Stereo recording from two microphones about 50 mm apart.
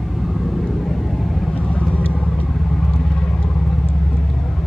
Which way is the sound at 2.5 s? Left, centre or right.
Centre.